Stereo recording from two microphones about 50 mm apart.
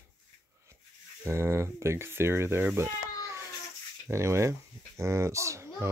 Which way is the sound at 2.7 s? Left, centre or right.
Right.